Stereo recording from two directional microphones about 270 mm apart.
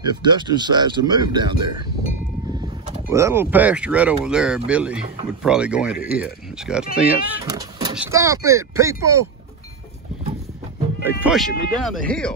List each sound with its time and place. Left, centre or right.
0.0 s speech: centre
3.1 s speech: centre
11.1 s speech: centre